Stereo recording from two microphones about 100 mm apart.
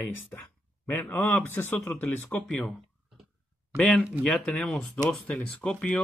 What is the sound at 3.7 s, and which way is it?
Speech, 10° left (ahead or behind).